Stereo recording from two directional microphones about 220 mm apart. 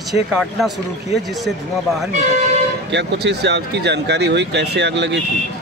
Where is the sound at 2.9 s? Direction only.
50° right (ahead or behind).